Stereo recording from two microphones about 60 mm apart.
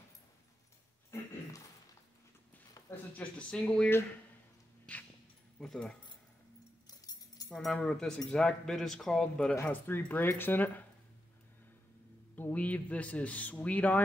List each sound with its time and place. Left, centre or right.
3.2 s speech: centre
4.9 s a sound: left
5.6 s speech: centre
7.5 s speech: centre
9.7 s speech: left
12.4 s a man's voice: left